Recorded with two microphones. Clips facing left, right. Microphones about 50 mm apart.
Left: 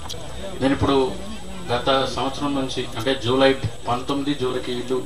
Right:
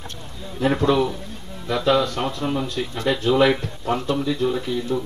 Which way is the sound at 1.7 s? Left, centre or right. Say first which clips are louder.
Right 1 dB; right.